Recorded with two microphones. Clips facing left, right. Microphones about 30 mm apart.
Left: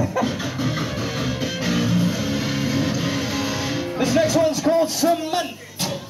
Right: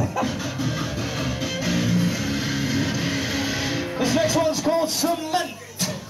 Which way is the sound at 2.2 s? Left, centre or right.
Centre.